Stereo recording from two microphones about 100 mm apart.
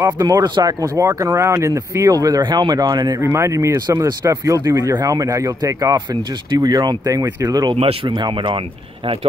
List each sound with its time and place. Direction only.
0.0 s speech: 40° right (ahead or behind)
3.2 s speech: 30° right (ahead or behind)
7.7 s speech: 75° right (ahead or behind)
8.1 s speech: 50° right (ahead or behind)